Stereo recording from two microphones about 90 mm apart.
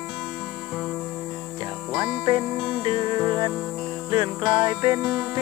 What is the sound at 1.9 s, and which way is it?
Music, 10° right (ahead or behind).